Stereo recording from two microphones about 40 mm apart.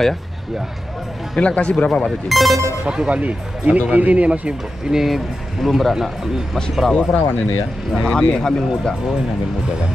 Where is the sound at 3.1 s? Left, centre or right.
Right.